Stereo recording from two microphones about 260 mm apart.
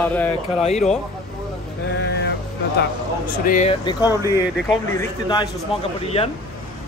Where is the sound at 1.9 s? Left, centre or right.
Left.